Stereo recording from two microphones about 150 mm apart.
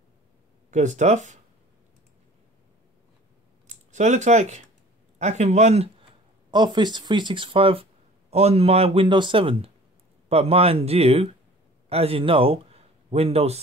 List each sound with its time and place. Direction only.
0.7 s speech: 55° right (ahead or behind)
3.6 s a sound: 50° right (ahead or behind)
5.2 s speech: 50° right (ahead or behind)
6.5 s a man's voice: 30° right (ahead or behind)